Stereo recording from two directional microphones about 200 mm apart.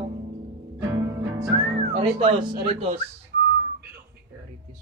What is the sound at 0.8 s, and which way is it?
Music, 15° right (ahead or behind).